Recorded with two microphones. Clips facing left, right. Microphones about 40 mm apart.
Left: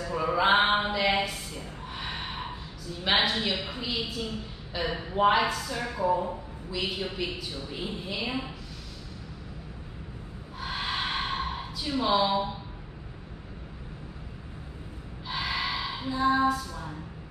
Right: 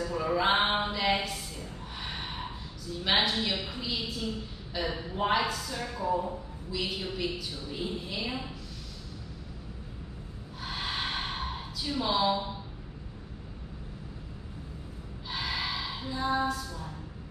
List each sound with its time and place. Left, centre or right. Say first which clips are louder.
0.1 s a sound: left 4 dB; centre
1.6 s gasp: left 3 dB; centre
3.6 s speech: left 2 dB; centre
4.8 s speech: left 6 dB; left
8.2 s a woman's voice: left 4 dB; left
10.6 s gasp: left 3 dB; centre
15.2 s female singing: left 3 dB; centre